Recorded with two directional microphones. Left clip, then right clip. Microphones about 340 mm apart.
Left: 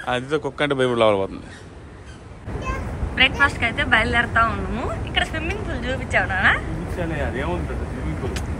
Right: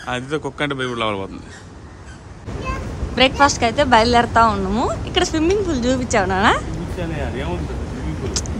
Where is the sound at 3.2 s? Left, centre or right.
Centre.